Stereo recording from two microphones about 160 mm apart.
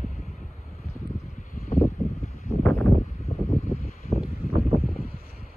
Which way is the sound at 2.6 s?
15° left (ahead or behind).